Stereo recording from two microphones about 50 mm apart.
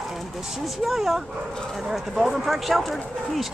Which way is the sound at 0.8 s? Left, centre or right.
Centre.